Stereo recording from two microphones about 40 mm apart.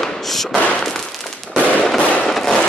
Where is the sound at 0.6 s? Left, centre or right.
Left.